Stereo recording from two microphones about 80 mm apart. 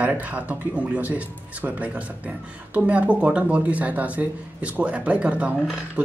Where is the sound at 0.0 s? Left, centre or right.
Centre.